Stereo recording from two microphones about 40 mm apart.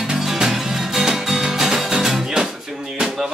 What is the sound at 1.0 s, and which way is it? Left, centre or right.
Music, centre.